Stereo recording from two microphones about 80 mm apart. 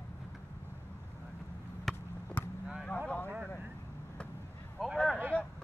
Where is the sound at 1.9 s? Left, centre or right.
Centre.